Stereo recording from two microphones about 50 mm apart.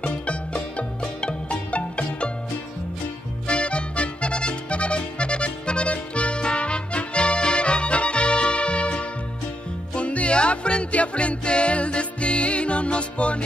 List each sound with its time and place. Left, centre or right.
0.0 s music: left
3.4 s music: left